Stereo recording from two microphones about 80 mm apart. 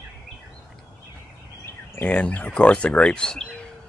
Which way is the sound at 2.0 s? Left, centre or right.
Centre.